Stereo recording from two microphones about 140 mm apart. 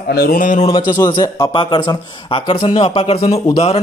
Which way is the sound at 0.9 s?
25° left (ahead or behind).